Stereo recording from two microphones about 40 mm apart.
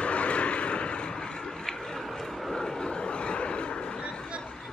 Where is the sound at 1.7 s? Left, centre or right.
Centre; by 3.9 s left.